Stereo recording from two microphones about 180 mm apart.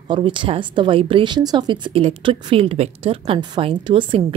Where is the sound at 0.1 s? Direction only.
25° right (ahead or behind).